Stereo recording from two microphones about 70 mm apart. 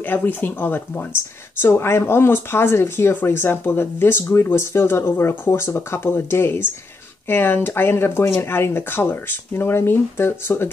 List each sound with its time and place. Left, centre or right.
0.0 s speech: left
5.1 s speech: left